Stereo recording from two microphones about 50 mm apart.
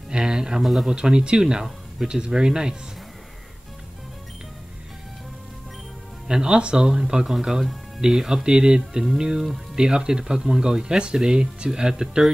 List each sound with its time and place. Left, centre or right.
0.1 s a sound: centre
0.7 s speech: centre
0.9 s speech: centre
6.2 s speech: centre